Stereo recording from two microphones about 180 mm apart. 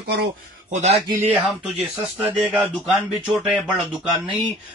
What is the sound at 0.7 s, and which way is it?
Speech, 40° right (ahead or behind).